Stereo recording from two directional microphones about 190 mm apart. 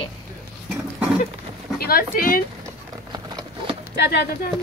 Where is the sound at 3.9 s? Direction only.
60° left (ahead or behind).